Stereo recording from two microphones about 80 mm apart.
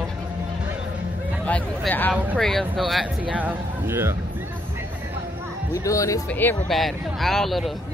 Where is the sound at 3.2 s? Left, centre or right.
Centre.